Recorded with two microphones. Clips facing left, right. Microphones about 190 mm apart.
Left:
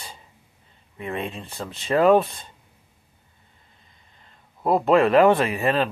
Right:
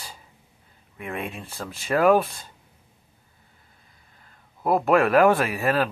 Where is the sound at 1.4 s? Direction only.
Centre (ahead or behind).